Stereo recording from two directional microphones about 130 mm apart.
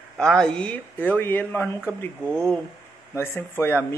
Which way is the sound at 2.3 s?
5° left (ahead or behind).